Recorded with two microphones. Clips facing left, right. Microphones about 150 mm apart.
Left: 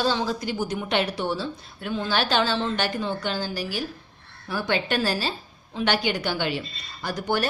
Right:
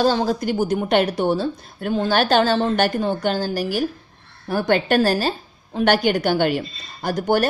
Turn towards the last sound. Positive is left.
turn(degrees=-45)  # may be behind; listen again after turning